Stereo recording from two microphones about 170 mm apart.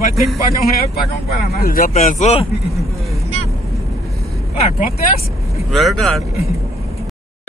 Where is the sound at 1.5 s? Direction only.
60° left (ahead or behind).